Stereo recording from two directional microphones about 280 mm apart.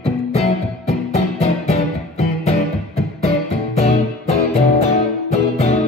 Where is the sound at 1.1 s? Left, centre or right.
Left.